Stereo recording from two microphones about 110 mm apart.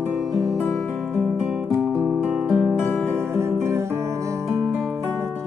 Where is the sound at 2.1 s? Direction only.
10° right (ahead or behind).